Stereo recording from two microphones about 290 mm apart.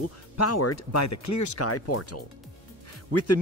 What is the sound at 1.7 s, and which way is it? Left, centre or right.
Speech, left.